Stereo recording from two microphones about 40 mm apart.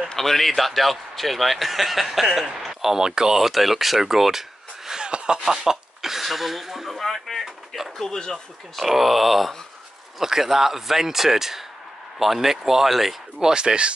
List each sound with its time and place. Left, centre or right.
0.1 s a man's voice: centre
5.0 s speech: right; by 8.4 s centre
8.7 s a man's voice: centre
13.4 s speech: centre